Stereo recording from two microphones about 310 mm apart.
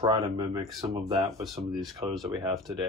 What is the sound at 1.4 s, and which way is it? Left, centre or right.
Speech, centre.